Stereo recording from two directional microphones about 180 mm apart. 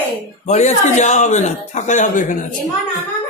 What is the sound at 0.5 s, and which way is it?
A man's voice, 40° left (ahead or behind).